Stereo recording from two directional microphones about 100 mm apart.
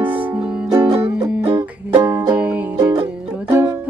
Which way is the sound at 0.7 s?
35° right (ahead or behind).